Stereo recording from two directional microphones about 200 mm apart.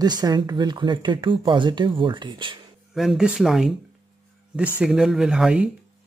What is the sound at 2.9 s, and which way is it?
Speech, centre (ahead or behind).